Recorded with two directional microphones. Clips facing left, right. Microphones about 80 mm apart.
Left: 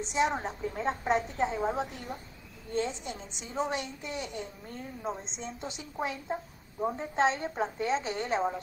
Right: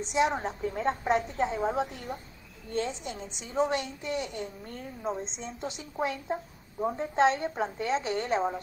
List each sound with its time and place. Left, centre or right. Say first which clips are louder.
0.1 s a woman's voice: right 2 dB; centre
2.1 s speech: right 2 dB; right
2.7 s a woman's voice: even; centre